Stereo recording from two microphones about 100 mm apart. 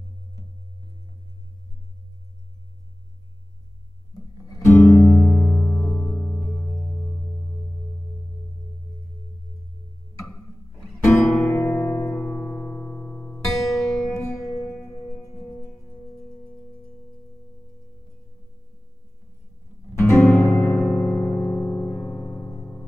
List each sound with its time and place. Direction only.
4.5 s music: 30° left (ahead or behind)
5.2 s music: 10° left (ahead or behind)
10.2 s music: 5° left (ahead or behind)
11.5 s music: 30° left (ahead or behind)
13.7 s music: centre (ahead or behind)
14.1 s music: 30° left (ahead or behind)
14.5 s music: 5° left (ahead or behind)
14.9 s music: 30° left (ahead or behind)
15.5 s music: 10° left (ahead or behind)
20.0 s music: 25° left (ahead or behind)
20.7 s music: 15° left (ahead or behind)